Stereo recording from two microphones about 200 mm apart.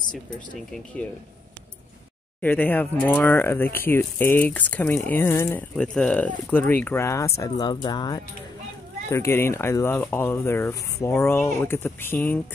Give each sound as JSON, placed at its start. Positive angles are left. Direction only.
{"t": 2.4, "sound": "speech", "side_deg": 10}